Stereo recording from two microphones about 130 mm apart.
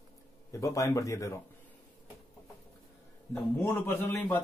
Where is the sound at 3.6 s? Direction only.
20° left (ahead or behind).